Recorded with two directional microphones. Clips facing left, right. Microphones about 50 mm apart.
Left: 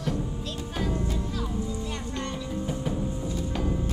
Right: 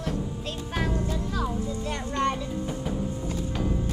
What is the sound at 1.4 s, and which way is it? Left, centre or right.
Music, right.